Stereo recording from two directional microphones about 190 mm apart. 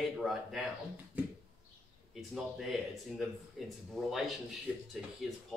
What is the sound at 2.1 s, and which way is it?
Speech, centre (ahead or behind).